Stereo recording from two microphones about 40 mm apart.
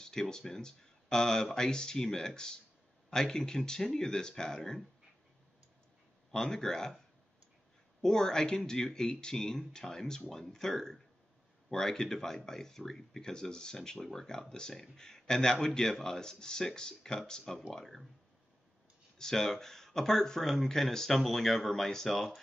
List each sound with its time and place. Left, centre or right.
0.0 s speech: centre
6.3 s speech: centre
8.0 s speech: centre
19.1 s speech: centre